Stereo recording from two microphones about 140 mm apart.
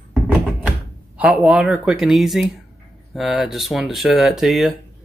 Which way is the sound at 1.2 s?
5° right (ahead or behind).